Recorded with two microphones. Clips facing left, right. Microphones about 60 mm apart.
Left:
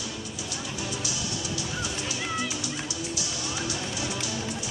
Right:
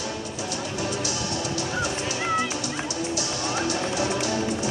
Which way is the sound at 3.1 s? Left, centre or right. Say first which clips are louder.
Right 6 dB; right.